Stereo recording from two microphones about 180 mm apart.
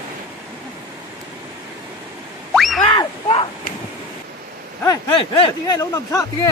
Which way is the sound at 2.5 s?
Centre (ahead or behind).